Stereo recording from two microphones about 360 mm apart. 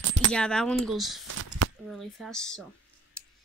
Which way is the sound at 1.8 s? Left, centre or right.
Centre.